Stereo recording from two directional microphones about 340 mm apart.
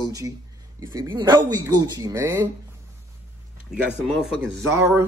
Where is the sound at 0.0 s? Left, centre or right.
Centre.